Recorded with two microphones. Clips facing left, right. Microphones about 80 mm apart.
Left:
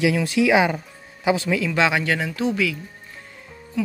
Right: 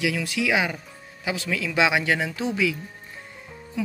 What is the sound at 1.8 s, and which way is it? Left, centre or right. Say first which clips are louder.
Speech: right 2 dB; centre.